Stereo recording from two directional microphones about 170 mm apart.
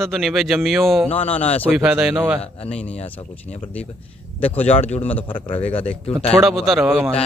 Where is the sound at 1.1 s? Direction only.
35° left (ahead or behind).